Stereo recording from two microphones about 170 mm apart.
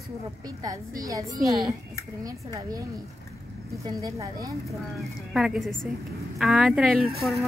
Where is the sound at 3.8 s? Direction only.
20° right (ahead or behind).